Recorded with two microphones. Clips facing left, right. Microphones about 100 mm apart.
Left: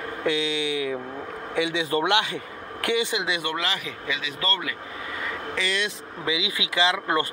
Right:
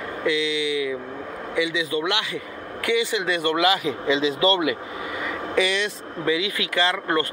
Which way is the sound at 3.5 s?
15° right (ahead or behind).